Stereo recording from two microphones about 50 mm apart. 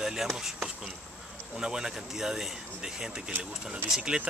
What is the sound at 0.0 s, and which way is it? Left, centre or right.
Speech, centre.